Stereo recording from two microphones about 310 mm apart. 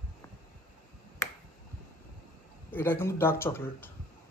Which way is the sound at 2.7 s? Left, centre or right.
Centre.